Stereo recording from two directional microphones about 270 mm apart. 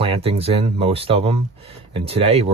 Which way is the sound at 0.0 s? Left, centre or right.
Right.